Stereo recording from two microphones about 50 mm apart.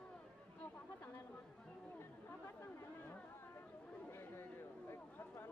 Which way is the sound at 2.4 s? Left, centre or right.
Left.